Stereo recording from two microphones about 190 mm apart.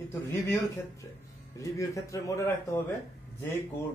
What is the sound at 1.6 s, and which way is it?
Speech, 15° left (ahead or behind).